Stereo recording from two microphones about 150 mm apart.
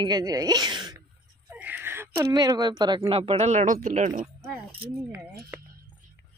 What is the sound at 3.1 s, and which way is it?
Speech, 40° right (ahead or behind).